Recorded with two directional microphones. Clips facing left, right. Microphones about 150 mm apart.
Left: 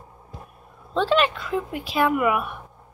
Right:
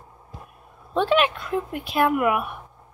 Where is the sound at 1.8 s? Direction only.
50° right (ahead or behind).